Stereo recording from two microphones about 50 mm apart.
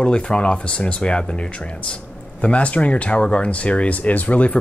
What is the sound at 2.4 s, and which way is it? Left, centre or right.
Speech, left.